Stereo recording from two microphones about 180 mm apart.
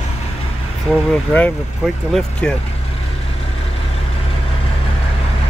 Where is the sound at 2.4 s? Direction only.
5° left (ahead or behind).